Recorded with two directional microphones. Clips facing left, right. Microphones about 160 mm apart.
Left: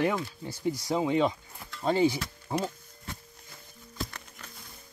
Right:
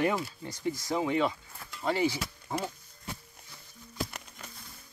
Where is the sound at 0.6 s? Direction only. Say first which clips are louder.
Left 2 dB; 15° left (ahead or behind).